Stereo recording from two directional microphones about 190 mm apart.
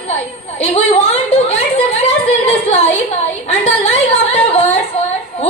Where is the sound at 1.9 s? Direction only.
35° left (ahead or behind).